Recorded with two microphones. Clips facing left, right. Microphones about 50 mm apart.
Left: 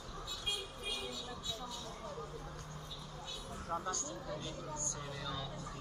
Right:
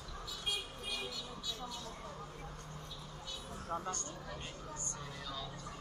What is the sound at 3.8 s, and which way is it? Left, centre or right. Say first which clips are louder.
Speech: left 2 dB; right.